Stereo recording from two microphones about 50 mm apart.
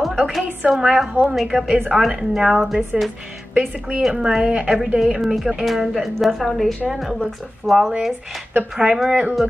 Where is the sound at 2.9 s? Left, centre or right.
Centre.